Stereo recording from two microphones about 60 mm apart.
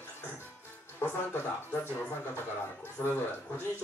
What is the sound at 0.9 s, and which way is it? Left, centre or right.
Speech, left.